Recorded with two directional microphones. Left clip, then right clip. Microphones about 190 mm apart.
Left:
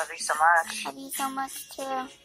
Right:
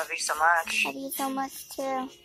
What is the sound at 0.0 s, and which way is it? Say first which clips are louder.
Speech: left 2 dB; centre (ahead or behind).